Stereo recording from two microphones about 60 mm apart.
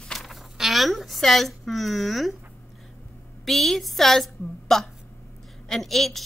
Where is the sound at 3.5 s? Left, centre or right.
Centre.